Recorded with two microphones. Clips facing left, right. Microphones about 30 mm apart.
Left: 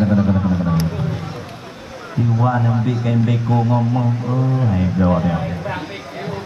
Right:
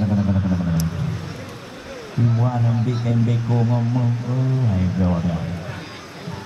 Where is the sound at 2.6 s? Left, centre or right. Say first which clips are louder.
Left 3 dB; left.